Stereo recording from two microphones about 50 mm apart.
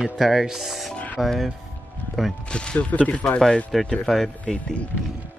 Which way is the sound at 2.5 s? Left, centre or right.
Centre.